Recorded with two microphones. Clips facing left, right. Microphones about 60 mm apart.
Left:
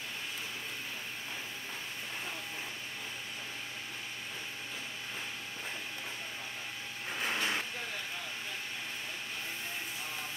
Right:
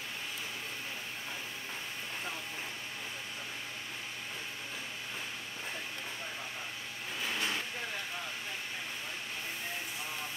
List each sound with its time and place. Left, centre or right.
7.2 s vehicle: left